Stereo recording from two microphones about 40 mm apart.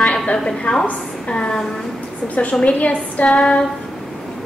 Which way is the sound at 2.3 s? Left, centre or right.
Left.